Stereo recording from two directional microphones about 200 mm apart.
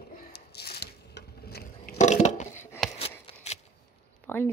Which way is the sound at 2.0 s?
35° left (ahead or behind).